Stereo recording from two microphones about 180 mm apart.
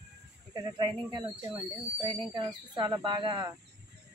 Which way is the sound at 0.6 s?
25° right (ahead or behind).